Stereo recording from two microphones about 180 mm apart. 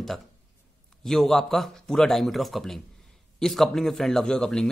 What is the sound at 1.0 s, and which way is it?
Speech, centre (ahead or behind).